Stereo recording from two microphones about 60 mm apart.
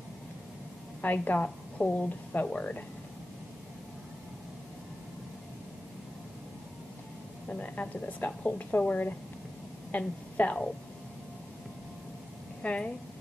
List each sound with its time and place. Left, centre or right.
1.0 s a woman's voice: left
7.4 s a woman's voice: left
12.6 s speech: left